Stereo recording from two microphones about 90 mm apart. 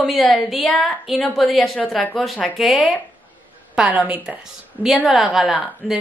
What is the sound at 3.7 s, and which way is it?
Speech, 10° right (ahead or behind).